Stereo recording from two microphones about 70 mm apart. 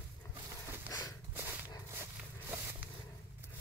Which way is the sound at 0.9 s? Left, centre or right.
Left.